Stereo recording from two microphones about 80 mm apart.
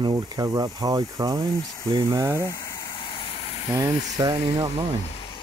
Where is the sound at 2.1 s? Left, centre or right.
Right.